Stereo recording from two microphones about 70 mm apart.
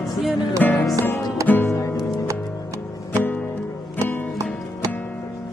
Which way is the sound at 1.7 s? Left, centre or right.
Left.